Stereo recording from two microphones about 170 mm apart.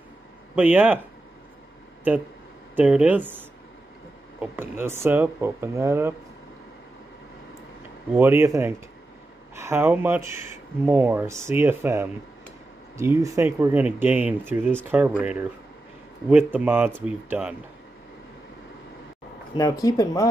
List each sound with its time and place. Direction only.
0.6 s speech: 10° right (ahead or behind)
2.7 s speech: 5° right (ahead or behind)
8.1 s speech: 15° right (ahead or behind)
19.5 s speech: 20° left (ahead or behind)